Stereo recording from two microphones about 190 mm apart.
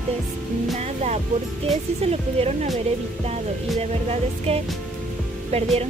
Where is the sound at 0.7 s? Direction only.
35° right (ahead or behind).